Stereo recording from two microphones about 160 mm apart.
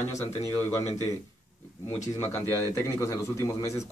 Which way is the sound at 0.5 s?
15° left (ahead or behind).